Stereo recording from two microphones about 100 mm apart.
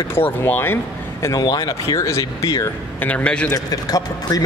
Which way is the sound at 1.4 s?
45° left (ahead or behind).